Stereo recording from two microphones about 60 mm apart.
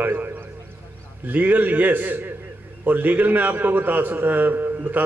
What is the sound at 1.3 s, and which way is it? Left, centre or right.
A man's voice, right.